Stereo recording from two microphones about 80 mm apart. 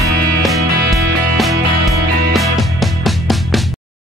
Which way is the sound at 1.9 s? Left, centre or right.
Centre.